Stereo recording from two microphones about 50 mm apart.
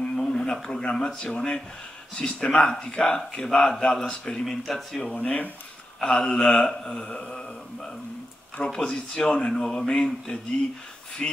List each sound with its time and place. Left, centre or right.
0.3 s speech: centre
4.5 s speech: centre
5.1 s speech: left
5.9 s speech: centre
7.2 s mantra: centre
8.6 s speech: centre